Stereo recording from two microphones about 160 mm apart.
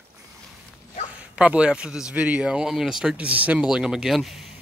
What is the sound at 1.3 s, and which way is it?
Speech, 5° right (ahead or behind).